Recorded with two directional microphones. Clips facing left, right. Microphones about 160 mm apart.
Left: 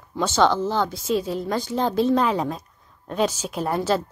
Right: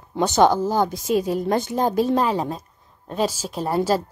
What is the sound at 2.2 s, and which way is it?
Speech, 30° right (ahead or behind).